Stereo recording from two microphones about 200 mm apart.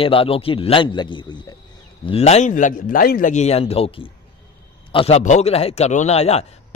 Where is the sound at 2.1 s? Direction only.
30° left (ahead or behind).